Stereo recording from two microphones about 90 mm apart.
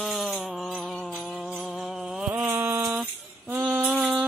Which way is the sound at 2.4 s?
25° right (ahead or behind).